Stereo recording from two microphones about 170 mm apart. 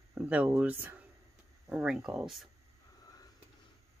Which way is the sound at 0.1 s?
10° right (ahead or behind).